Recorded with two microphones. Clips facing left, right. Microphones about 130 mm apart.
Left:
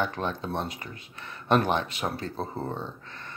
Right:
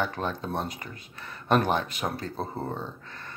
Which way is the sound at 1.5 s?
40° right (ahead or behind).